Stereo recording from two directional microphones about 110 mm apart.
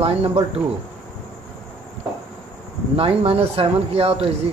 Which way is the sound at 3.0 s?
65° right (ahead or behind).